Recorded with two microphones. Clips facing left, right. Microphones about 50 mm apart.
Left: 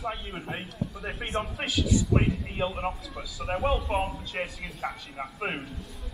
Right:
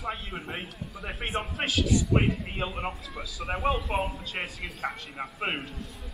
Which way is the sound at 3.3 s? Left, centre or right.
Centre.